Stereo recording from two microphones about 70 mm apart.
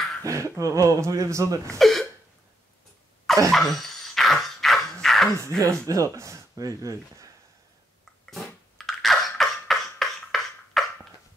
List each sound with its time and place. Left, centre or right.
0.2 s speech: right
1.8 s hiccup: centre
3.5 s dog: centre
5.0 s a sound: centre
5.6 s speech: right
8.7 s cough: centre